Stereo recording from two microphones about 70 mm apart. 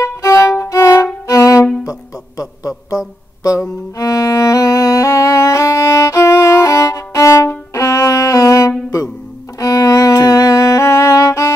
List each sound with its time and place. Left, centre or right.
0.0 s violin: left
1.9 s a sound: left
4.0 s music: left